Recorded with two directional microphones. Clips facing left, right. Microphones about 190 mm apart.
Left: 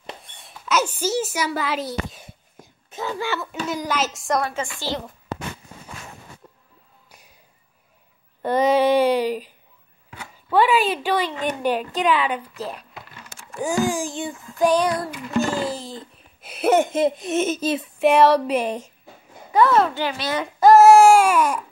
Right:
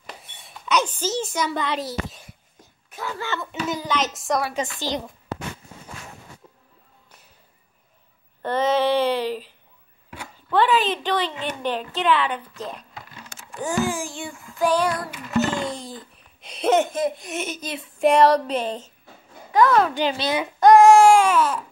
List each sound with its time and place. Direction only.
0.2 s a child's voice: centre (ahead or behind)
2.9 s a woman's voice: 20° left (ahead or behind); by 4.6 s centre (ahead or behind)
4.6 s a child's voice: 15° right (ahead or behind)
7.1 s a sound: 15° left (ahead or behind)
8.4 s a sound: 10° left (ahead or behind)
10.5 s a woman's voice: 10° left (ahead or behind)
15.4 s a child's voice: 5° left (ahead or behind)
16.9 s a child's voice: 25° left (ahead or behind)
17.9 s a woman's voice: 5° left (ahead or behind)
19.9 s a child's voice: 20° right (ahead or behind)
20.5 s baby cry: 5° left (ahead or behind)